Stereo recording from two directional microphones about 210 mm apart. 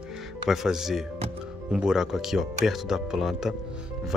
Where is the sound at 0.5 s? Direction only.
Centre (ahead or behind).